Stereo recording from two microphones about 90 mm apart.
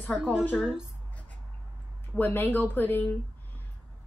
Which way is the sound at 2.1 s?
20° left (ahead or behind).